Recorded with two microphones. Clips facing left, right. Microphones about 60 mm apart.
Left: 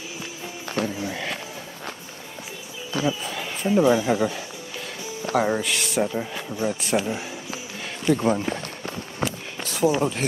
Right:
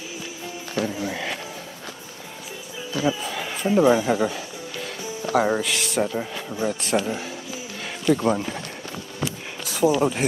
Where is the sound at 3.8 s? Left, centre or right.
Centre.